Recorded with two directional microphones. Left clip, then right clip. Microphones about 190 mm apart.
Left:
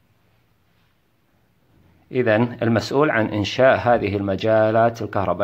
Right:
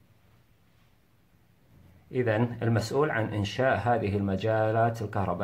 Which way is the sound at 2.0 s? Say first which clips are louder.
Left 9 dB; 35° left (ahead or behind).